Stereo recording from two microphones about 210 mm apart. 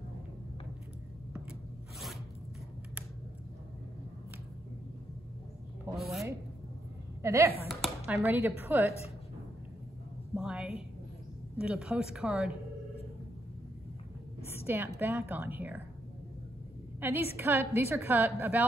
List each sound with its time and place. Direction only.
5.9 s rub: centre (ahead or behind)
7.2 s a woman's voice: 15° right (ahead or behind)
7.6 s speech: centre (ahead or behind)
10.3 s a sound: 5° right (ahead or behind)
11.5 s speech: 5° right (ahead or behind)
15.0 s a woman's voice: 10° right (ahead or behind)
17.0 s a woman's voice: 10° right (ahead or behind)